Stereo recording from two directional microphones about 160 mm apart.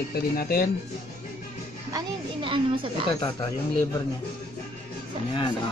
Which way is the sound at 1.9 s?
30° right (ahead or behind).